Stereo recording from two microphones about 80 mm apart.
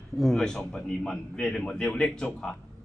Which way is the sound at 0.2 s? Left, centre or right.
Centre.